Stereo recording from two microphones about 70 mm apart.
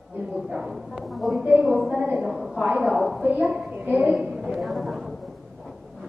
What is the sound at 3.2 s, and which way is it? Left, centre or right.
Speech, centre.